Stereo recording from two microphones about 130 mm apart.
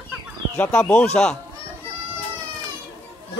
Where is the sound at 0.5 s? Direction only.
15° left (ahead or behind).